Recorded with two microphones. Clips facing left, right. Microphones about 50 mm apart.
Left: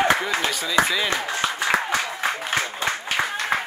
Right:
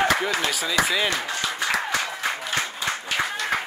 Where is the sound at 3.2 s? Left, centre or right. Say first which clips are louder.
Left 2 dB; centre.